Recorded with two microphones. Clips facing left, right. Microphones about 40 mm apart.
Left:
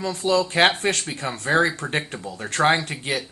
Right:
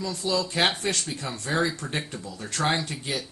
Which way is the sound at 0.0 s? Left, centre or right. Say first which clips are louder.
Left 6 dB; left.